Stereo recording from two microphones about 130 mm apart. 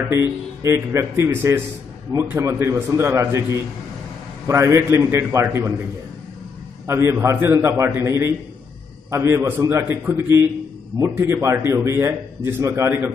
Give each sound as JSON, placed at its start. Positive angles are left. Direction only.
{"t": 0.1, "sound": "a man's voice", "side_deg": -20}
{"t": 6.9, "sound": "a man's voice", "side_deg": -20}